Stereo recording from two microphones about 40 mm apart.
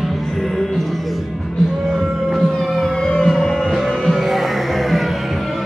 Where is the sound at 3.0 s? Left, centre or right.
Centre.